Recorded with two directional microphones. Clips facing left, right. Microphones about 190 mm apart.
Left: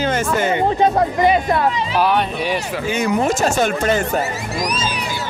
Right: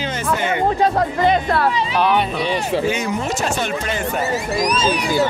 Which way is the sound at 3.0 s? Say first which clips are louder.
Left 5 dB; 45° left (ahead or behind).